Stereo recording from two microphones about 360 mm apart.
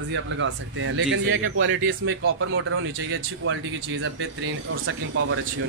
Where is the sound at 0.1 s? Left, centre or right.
Right.